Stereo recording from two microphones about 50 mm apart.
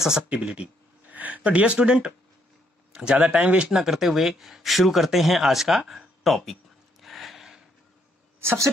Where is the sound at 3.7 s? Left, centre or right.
Centre.